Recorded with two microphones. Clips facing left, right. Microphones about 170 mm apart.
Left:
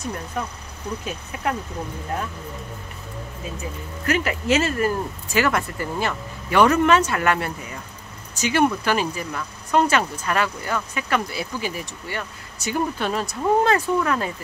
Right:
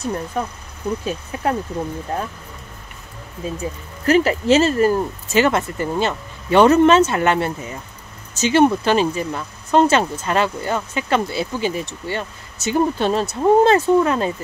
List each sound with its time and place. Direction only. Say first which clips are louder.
1.0 s speech: right 2 dB; 30° right (ahead or behind)
4.0 s speech: right 8 dB; 30° right (ahead or behind)